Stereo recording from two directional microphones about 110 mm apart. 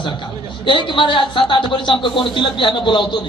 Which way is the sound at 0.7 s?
50° left (ahead or behind).